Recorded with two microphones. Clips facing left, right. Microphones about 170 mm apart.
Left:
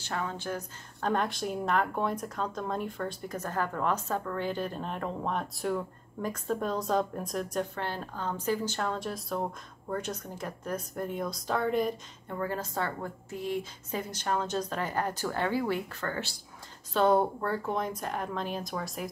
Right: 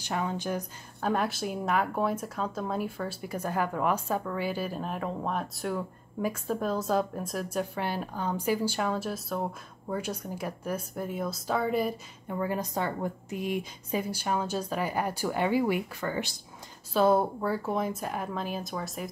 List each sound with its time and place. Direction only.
0.0 s speech: 15° right (ahead or behind)
1.1 s speech: 5° right (ahead or behind)
16.9 s speech: 5° right (ahead or behind)